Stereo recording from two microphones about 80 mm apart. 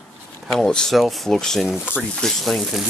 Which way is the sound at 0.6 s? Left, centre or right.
Centre.